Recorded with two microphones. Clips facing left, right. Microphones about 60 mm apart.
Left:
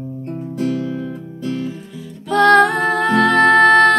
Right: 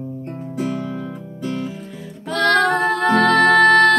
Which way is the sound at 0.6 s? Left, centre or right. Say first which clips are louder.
Left 3 dB; centre.